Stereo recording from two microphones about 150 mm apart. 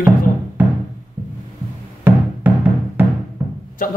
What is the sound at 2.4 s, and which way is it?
Music, 10° right (ahead or behind).